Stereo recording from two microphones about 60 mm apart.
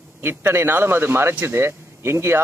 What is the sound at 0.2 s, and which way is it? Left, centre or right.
Speech, right.